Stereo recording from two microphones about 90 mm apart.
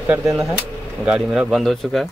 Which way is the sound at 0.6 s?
10° right (ahead or behind).